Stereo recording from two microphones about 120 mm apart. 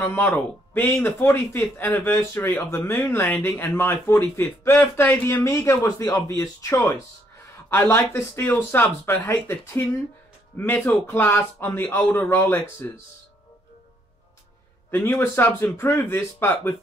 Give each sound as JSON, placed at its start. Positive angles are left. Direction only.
{"t": 0.0, "sound": "a man's voice", "side_deg": 15}
{"t": 14.9, "sound": "speech", "side_deg": 20}